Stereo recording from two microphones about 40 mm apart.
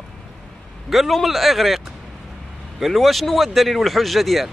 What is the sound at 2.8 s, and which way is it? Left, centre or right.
A man's voice, centre.